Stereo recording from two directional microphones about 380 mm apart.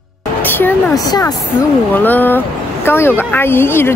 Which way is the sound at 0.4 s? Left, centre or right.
Centre.